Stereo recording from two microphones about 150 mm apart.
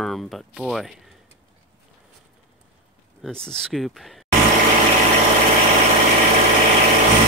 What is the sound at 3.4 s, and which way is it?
Speech, 5° left (ahead or behind).